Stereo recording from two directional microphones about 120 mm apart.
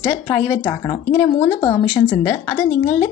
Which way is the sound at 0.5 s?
25° left (ahead or behind).